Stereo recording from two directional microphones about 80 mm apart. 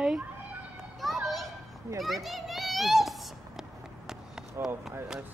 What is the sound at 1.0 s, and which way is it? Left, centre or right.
Children playing, centre.